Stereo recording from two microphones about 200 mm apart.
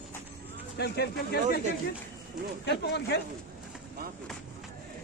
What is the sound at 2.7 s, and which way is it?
Speech, 55° left (ahead or behind).